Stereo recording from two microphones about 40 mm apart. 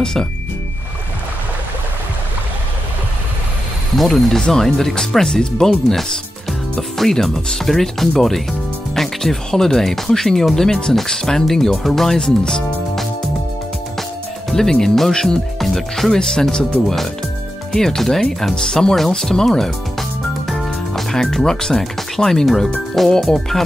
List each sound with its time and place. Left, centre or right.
0.0 s speech: centre
3.9 s speech: centre
14.5 s speech: centre
16.1 s speech: centre
19.4 s music: centre
22.9 s speech: centre